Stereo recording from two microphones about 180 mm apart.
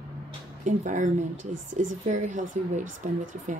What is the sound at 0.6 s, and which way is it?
Speech, 45° right (ahead or behind).